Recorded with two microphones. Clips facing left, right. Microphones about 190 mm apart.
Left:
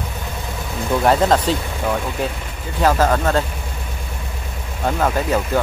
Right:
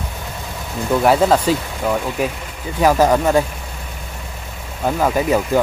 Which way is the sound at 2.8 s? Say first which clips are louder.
Right 3 dB; 10° right (ahead or behind).